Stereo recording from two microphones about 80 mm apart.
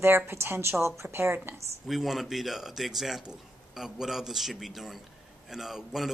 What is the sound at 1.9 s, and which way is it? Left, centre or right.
A man's voice, centre.